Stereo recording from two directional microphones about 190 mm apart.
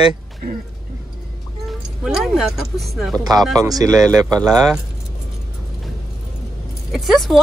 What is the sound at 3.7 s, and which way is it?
Speech, 20° right (ahead or behind).